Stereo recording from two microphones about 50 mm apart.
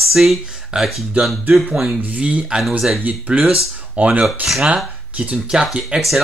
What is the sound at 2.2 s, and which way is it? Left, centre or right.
Speech, right.